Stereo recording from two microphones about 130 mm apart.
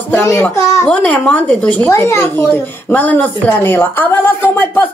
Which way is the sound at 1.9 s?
25° left (ahead or behind).